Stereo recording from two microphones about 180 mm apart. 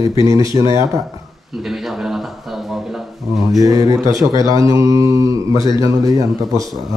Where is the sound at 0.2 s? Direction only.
15° right (ahead or behind).